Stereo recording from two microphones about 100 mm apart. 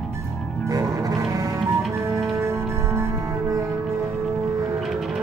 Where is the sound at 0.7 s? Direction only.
35° right (ahead or behind).